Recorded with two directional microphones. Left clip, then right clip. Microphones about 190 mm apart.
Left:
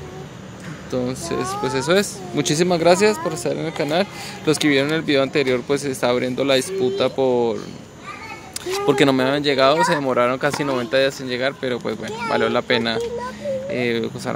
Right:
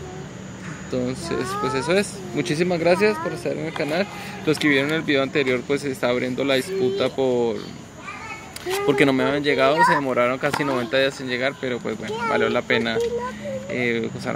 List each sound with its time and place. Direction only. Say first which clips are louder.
0.9 s speech: left 2 dB; 15° left (ahead or behind)
8.8 s speech: left 2 dB; 15° left (ahead or behind)